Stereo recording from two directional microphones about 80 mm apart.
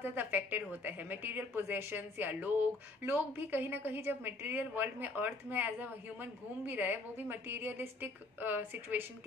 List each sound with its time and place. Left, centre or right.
0.0 s a woman's voice: right